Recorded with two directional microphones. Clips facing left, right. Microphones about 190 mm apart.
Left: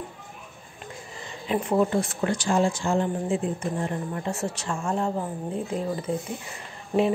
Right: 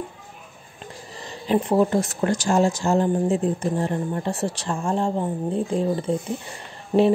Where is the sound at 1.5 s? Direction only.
35° right (ahead or behind).